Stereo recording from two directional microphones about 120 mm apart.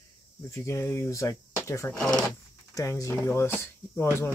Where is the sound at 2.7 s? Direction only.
30° left (ahead or behind).